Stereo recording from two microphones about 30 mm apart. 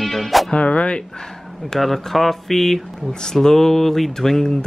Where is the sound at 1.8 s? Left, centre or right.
Centre.